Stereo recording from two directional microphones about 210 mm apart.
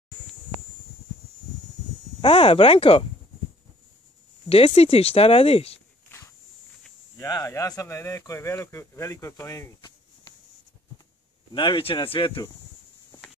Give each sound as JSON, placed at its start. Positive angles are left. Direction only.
{"t": 2.2, "sound": "speech", "side_deg": 25}
{"t": 4.5, "sound": "speech", "side_deg": 25}
{"t": 7.2, "sound": "speech", "side_deg": 15}
{"t": 11.5, "sound": "speech", "side_deg": 25}